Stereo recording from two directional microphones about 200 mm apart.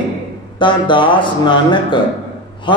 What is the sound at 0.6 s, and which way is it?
Speech, 25° left (ahead or behind).